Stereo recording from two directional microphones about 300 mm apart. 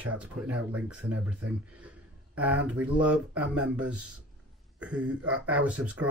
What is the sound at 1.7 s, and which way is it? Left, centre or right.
Speech, centre.